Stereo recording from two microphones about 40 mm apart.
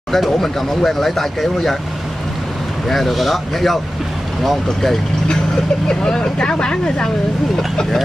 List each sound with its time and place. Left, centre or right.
0.1 s speech: centre
2.9 s speech: centre
5.9 s speech: centre